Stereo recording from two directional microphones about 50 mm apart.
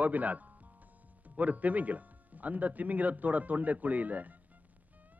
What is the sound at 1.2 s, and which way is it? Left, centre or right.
Speech, right.